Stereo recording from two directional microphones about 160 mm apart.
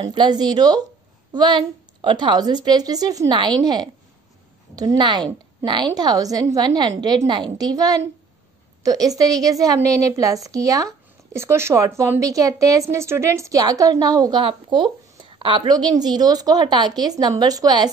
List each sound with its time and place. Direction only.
0.0 s a woman's voice: 30° right (ahead or behind)